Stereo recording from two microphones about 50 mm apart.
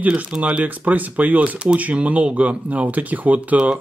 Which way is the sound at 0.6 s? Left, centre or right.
Right.